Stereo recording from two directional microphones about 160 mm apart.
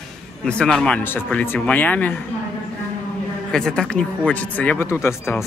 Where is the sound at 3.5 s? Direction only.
5° left (ahead or behind).